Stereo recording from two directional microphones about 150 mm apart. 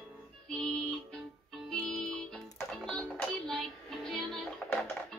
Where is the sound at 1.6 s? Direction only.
5° left (ahead or behind).